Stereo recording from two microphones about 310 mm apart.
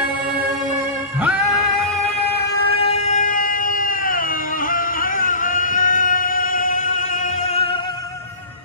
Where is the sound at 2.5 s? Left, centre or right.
Centre.